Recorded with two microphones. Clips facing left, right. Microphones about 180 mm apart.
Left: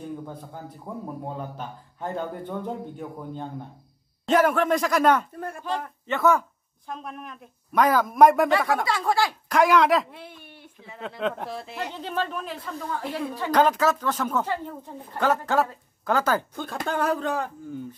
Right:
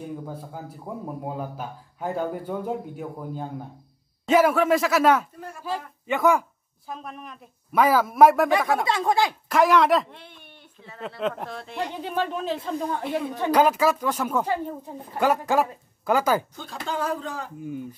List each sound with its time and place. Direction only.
0.0 s speech: 5° right (ahead or behind)
6.9 s a woman's voice: centre (ahead or behind)
8.8 s a woman's voice: 20° right (ahead or behind)
9.5 s a woman's voice: centre (ahead or behind)
11.9 s a woman's voice: 10° right (ahead or behind)
13.5 s speech: 10° right (ahead or behind)
16.5 s speech: 55° left (ahead or behind)
17.6 s speech: 10° right (ahead or behind)